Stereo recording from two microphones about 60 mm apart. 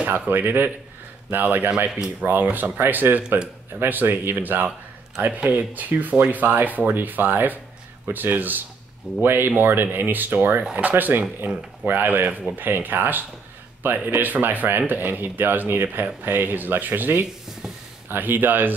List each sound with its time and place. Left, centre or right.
0.3 s speech: right
3.3 s speech: centre
3.8 s speech: right